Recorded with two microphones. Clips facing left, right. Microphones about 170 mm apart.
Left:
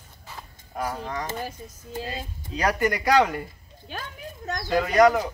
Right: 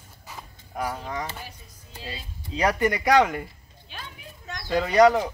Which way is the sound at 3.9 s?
45° left (ahead or behind).